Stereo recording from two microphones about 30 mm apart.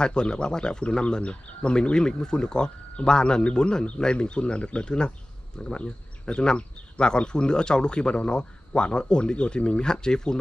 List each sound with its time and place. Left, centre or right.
0.0 s speech: left
0.8 s speech: left
3.4 s speech: left